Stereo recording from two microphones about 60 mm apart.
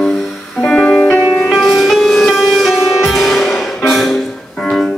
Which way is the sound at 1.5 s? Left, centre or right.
Centre.